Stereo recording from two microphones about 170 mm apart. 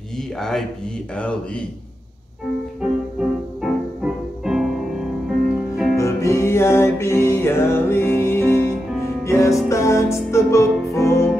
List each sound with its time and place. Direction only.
0.4 s speech: 5° left (ahead or behind)
2.8 s music: 5° right (ahead or behind)
5.9 s music: 15° left (ahead or behind)